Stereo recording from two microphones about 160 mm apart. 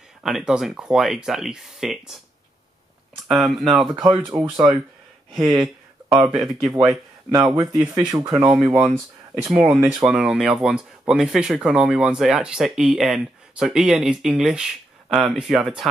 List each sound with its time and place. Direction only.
0.2 s speech: centre (ahead or behind)
3.3 s speech: centre (ahead or behind)
3.9 s speech: 30° right (ahead or behind)
4.4 s speech: 5° right (ahead or behind)
6.9 s speech: 20° right (ahead or behind)
9.4 s speech: 5° right (ahead or behind)